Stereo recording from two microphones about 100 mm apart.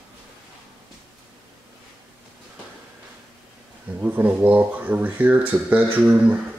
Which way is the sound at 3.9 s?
20° right (ahead or behind).